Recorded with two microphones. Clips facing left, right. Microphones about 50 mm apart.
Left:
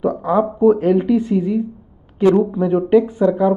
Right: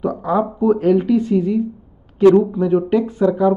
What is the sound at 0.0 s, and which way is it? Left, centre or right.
Speech, centre.